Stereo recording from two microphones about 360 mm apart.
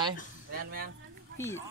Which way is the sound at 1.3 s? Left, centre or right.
Centre.